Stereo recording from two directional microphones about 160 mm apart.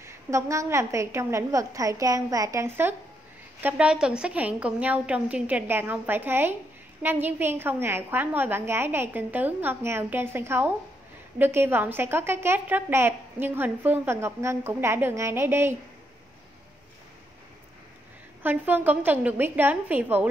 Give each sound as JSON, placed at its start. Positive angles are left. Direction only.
{"t": 0.0, "sound": "a woman's voice", "side_deg": -20}
{"t": 18.4, "sound": "a woman's voice", "side_deg": -10}